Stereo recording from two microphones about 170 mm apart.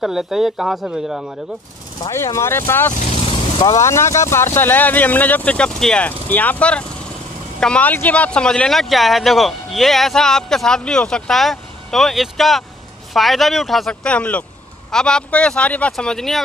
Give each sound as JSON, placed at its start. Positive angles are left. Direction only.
{"t": 0.0, "sound": "speech", "side_deg": -5}
{"t": 2.0, "sound": "speech", "side_deg": 15}
{"t": 3.3, "sound": "vehicle", "side_deg": 30}
{"t": 3.8, "sound": "speech", "side_deg": 15}